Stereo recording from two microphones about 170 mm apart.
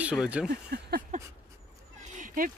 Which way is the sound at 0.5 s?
70° right (ahead or behind).